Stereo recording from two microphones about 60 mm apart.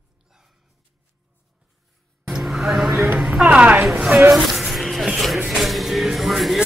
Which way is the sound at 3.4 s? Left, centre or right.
Right.